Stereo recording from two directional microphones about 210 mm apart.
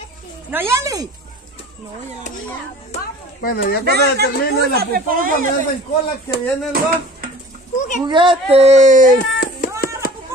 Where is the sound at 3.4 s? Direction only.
45° left (ahead or behind).